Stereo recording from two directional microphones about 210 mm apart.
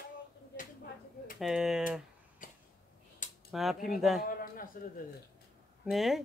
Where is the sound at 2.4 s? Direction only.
40° left (ahead or behind).